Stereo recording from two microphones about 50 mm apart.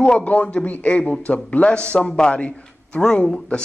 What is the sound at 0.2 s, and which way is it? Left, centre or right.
A man's voice, left.